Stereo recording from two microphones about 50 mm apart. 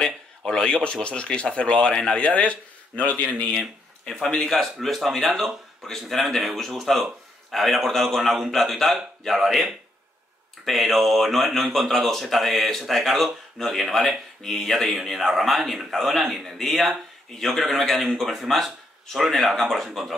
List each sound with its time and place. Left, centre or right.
0.5 s speech: centre
3.5 s speech: centre
10.6 s speech: centre